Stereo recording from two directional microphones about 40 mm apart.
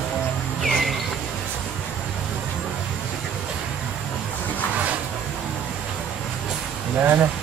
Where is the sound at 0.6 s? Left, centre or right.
Centre.